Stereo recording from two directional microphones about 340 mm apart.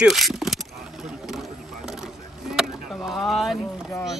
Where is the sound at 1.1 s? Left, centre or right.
Centre.